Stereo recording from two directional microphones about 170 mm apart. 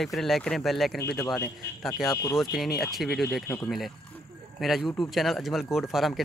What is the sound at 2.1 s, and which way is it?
Speech, 20° left (ahead or behind).